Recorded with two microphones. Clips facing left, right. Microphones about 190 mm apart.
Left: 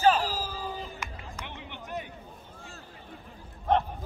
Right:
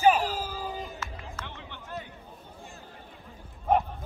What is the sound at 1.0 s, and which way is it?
Run, 15° left (ahead or behind).